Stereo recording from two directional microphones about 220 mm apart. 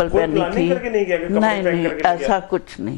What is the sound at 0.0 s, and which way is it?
A man's voice, 15° left (ahead or behind).